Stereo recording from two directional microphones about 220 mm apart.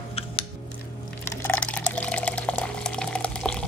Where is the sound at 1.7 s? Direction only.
5° left (ahead or behind).